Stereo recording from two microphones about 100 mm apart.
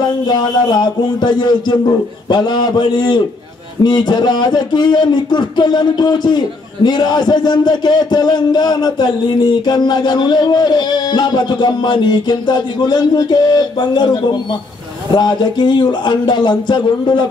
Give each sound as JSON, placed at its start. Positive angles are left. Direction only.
{"t": 0.3, "sound": "speech", "side_deg": 45}